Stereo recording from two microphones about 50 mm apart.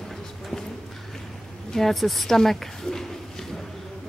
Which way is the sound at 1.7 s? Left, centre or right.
Centre.